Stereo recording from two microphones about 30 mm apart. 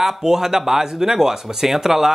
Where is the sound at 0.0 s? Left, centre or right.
Centre.